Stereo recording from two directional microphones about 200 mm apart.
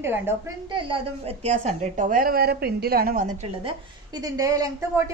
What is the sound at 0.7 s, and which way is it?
A woman's voice, 25° right (ahead or behind).